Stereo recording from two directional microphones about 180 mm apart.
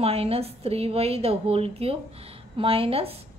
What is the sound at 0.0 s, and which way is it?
A woman's voice, 35° right (ahead or behind).